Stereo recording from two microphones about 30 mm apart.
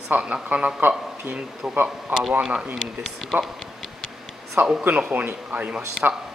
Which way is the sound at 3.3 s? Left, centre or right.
Right.